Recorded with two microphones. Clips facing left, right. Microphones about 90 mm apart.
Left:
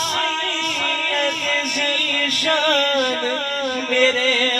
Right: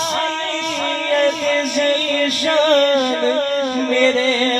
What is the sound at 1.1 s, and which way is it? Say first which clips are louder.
Music: right 9 dB; 30° right (ahead or behind).